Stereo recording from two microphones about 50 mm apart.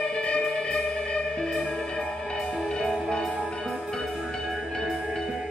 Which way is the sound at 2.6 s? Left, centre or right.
Centre.